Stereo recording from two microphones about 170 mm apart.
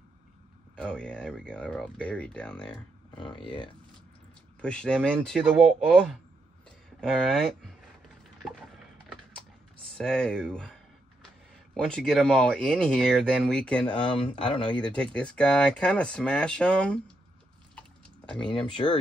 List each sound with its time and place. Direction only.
0.7 s speech: 5° left (ahead or behind)
3.2 s speech: 30° left (ahead or behind)
4.6 s speech: 5° left (ahead or behind)
8.4 s a sound: centre (ahead or behind)
9.8 s speech: 5° left (ahead or behind)
13.9 s speech: 35° left (ahead or behind)
14.8 s speech: 5° left (ahead or behind)